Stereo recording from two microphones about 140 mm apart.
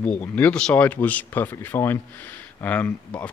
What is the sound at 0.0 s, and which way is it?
Speech, 10° left (ahead or behind).